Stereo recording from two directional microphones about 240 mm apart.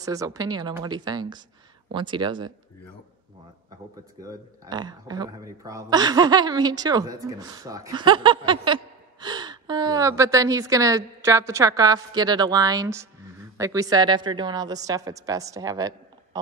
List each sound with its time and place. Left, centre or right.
0.0 s speech: centre
4.2 s speech: centre